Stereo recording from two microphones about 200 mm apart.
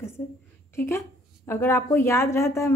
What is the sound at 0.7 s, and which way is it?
A woman's voice, 10° left (ahead or behind).